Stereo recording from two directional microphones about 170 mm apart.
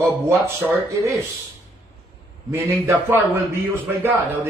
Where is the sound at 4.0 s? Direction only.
10° right (ahead or behind).